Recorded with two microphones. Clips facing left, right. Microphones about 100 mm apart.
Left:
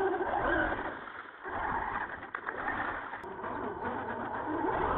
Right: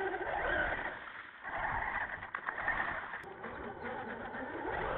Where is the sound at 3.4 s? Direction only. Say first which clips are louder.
Left 10 dB; 45° left (ahead or behind).